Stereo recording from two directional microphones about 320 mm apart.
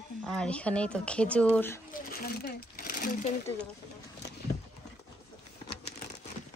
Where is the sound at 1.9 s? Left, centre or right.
Left.